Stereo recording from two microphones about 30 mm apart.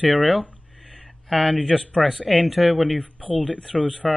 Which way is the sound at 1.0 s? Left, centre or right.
Centre.